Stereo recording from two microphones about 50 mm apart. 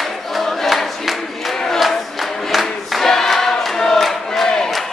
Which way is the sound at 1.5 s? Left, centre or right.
Centre.